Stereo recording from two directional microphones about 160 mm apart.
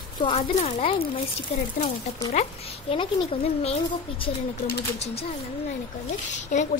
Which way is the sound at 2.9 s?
35° left (ahead or behind).